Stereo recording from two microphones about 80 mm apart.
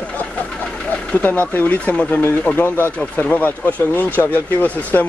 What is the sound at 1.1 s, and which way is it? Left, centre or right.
Speech, centre.